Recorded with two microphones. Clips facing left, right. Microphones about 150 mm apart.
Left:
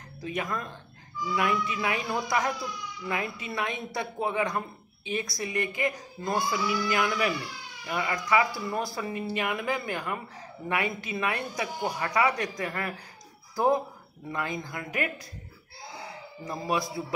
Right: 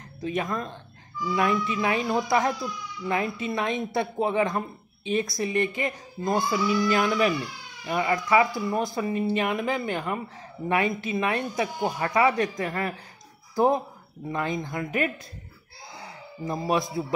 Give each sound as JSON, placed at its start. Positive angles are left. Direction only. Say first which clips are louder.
{"t": 0.2, "sound": "speech", "louder": "right 4 dB", "side_deg": -25}
{"t": 14.3, "sound": "speech", "louder": "right 4 dB", "side_deg": -25}
{"t": 16.4, "sound": "speech", "louder": "right 4 dB", "side_deg": -25}